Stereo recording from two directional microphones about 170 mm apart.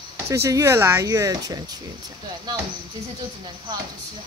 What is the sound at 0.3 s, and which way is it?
Speech, 20° right (ahead or behind).